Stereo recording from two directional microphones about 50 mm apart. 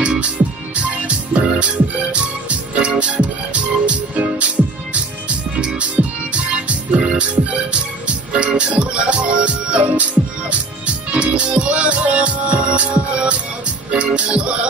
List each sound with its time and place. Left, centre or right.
0.0 s music: right
5.6 s music: centre
5.9 s music: right
11.1 s music: right